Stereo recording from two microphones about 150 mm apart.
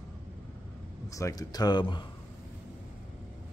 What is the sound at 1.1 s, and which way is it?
Speech, 25° left (ahead or behind).